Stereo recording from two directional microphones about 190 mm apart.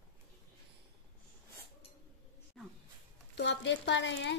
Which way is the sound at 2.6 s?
Centre (ahead or behind).